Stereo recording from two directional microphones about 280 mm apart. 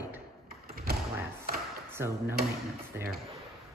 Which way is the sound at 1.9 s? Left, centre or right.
Centre.